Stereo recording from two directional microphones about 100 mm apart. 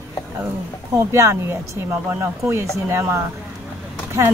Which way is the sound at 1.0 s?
30° right (ahead or behind).